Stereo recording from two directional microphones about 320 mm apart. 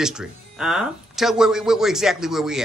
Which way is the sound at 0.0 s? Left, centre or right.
Centre.